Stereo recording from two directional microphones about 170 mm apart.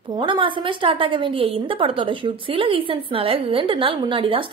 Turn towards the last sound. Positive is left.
turn(degrees=-30)  # may be behind; listen again after turning